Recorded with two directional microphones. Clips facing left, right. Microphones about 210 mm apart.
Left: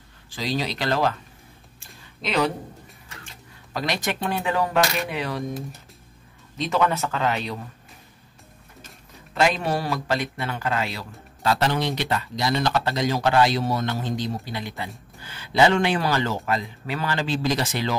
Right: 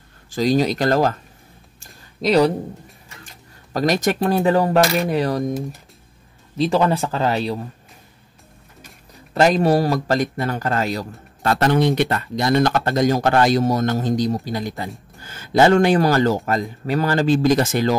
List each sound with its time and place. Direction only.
0.3 s a man's voice: 45° right (ahead or behind)
2.2 s speech: 40° right (ahead or behind)
3.7 s speech: 40° right (ahead or behind)
6.6 s speech: 35° right (ahead or behind)
9.3 s a man's voice: 40° right (ahead or behind)